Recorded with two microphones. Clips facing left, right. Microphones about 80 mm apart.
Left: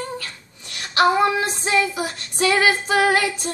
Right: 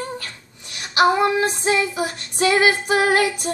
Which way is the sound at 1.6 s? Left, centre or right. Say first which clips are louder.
Right 1 dB; right.